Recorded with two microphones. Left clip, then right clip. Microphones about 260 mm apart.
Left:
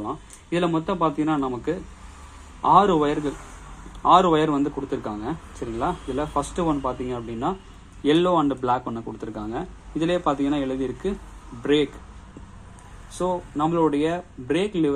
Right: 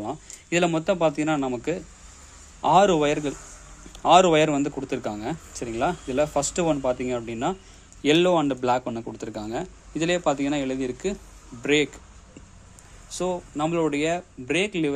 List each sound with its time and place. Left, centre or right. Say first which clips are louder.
0.0 s a man's voice: left 1 dB; right
13.1 s speech: left 2 dB; right